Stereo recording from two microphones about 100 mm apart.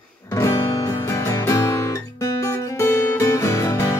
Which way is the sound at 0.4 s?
35° left (ahead or behind).